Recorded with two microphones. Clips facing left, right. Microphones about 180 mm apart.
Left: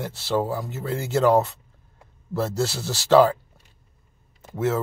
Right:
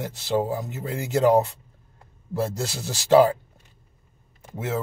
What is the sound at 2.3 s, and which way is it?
Speech, 15° right (ahead or behind).